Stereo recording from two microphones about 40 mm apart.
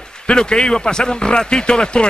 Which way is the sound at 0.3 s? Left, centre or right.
Left.